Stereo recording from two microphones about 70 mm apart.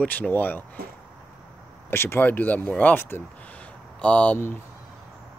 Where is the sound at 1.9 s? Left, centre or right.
Left.